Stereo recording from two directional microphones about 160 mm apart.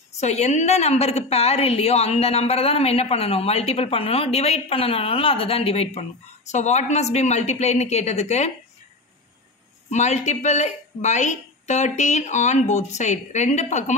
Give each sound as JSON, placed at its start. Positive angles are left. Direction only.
{"t": 0.2, "sound": "a woman's voice", "side_deg": 45}
{"t": 9.8, "sound": "a woman's voice", "side_deg": 45}